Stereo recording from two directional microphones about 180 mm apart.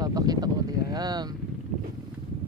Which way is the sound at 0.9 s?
20° right (ahead or behind).